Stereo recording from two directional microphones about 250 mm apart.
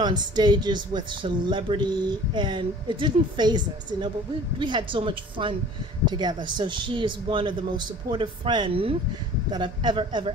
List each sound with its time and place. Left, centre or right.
0.0 s speech: centre